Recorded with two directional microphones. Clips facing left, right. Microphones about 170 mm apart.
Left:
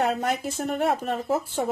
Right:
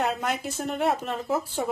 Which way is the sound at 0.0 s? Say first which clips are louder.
Left 3 dB; 50° left (ahead or behind).